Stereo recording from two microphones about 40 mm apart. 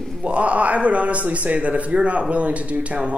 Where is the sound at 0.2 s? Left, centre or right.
Right.